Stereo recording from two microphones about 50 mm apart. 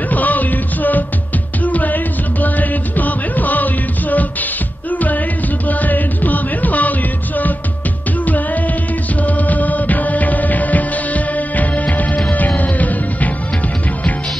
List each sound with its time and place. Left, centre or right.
0.1 s music: left
5.7 s music: left
9.2 s music: left